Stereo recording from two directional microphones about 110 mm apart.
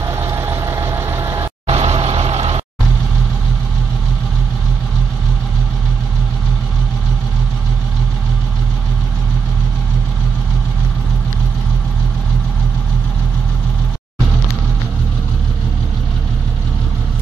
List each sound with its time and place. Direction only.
0.0 s vehicle: 25° right (ahead or behind)
1.7 s vehicle: 70° right (ahead or behind)